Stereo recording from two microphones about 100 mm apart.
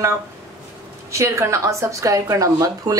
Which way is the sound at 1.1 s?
30° right (ahead or behind).